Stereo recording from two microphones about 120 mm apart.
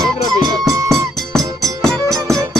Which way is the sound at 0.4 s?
30° right (ahead or behind).